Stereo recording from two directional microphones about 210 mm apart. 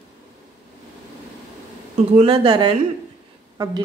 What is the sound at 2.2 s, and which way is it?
Speech, 25° right (ahead or behind).